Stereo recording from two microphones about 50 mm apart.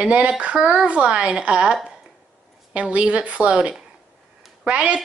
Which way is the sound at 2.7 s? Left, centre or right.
Right.